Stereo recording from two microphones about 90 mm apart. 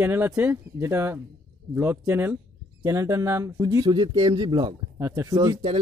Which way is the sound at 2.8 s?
35° right (ahead or behind).